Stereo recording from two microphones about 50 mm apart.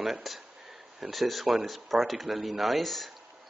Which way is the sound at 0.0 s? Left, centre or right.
Centre.